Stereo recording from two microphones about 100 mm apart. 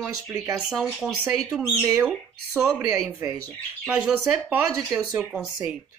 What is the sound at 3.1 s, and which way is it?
Speech, 25° right (ahead or behind).